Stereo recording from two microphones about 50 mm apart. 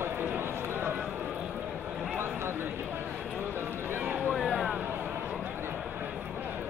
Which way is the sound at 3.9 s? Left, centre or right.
Right.